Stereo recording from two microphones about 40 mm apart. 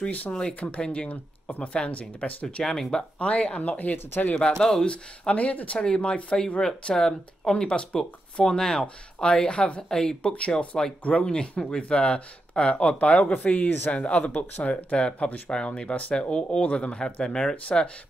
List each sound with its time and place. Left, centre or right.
0.5 s speech: left
2.6 s speech: centre
3.2 s speech: left
3.7 s speech: left
4.4 s speech: centre
4.8 s speech: left
5.8 s speech: left
9.8 s speech: centre
10.2 s speech: left
10.7 s speech: centre
11.1 s speech: left
15.2 s speech: left
15.5 s speech: left